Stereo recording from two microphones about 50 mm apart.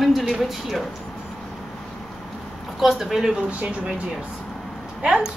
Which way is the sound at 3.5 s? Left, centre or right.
Right.